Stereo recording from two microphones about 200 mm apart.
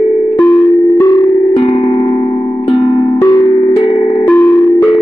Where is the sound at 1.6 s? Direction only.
20° left (ahead or behind).